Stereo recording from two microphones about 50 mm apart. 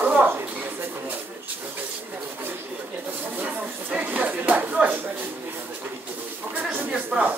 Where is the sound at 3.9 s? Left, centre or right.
Right.